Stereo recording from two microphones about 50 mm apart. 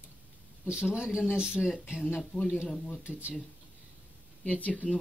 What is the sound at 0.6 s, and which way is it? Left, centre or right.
Speech, centre.